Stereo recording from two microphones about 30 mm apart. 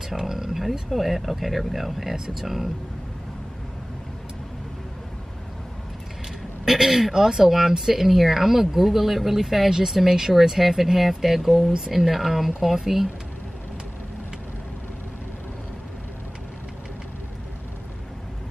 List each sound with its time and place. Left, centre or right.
0.1 s a sound: centre
0.7 s speech: centre
6.6 s speech: centre
9.7 s speech: centre